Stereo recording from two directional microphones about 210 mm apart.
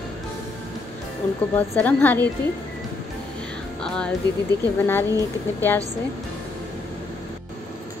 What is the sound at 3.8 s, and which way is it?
A woman's voice, 5° left (ahead or behind).